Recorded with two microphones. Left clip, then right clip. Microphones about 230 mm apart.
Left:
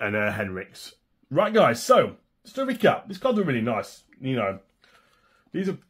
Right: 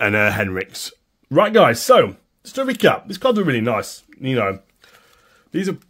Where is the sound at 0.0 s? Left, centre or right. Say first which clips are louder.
Right 9 dB; right.